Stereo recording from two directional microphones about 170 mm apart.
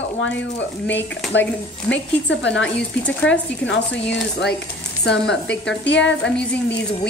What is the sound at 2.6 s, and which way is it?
Speech, 5° left (ahead or behind).